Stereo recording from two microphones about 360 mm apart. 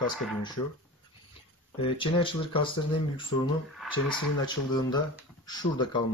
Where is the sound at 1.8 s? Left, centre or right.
Centre.